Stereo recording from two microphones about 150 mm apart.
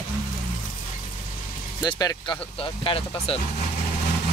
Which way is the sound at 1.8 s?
25° left (ahead or behind).